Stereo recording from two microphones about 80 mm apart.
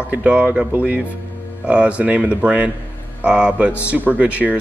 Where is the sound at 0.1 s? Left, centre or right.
Centre.